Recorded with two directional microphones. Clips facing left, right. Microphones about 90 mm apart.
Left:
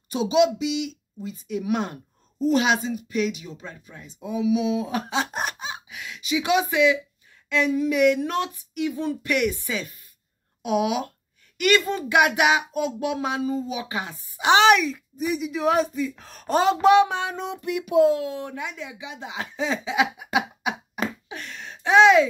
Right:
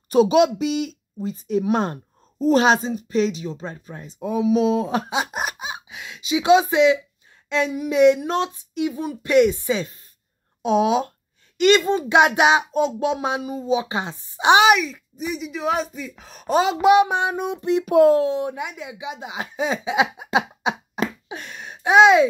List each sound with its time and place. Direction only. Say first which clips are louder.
0.1 s speech: right 4 dB; 50° right (ahead or behind)
5.1 s a sound: right 2 dB; 10° right (ahead or behind); by 7.0 s 25° right (ahead or behind)
7.4 s speech: left 1 dB; 20° right (ahead or behind)
14.7 s speech: even; centre (ahead or behind); by 17.8 s 25° right (ahead or behind)
17.8 s speech: right 4 dB; 50° right (ahead or behind)
18.2 s speech: right 7 dB; 20° right (ahead or behind)